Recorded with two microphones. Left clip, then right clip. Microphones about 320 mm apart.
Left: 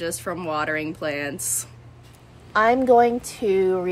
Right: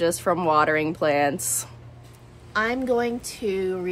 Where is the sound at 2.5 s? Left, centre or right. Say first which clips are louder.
Left 7 dB; centre.